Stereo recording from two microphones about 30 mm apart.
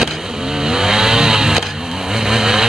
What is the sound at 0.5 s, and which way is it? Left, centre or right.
Vehicle, centre.